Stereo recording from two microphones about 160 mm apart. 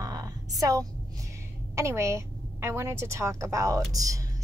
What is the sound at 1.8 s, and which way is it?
A woman's voice, 20° right (ahead or behind).